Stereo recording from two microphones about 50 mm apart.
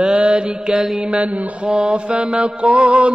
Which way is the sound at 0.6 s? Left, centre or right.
Centre.